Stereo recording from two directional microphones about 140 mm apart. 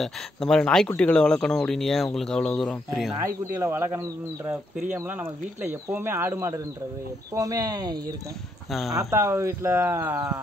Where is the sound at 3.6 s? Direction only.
15° right (ahead or behind).